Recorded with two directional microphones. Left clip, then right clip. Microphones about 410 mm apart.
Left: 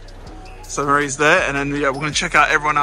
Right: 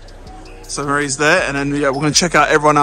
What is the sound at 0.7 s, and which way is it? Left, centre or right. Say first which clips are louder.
Speech: left 1 dB; centre.